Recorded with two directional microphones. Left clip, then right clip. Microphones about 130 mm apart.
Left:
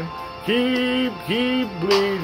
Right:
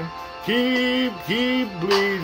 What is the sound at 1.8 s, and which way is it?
Music, 45° left (ahead or behind).